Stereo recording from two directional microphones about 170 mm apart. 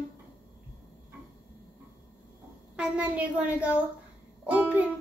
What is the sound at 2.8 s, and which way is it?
Music, 10° right (ahead or behind).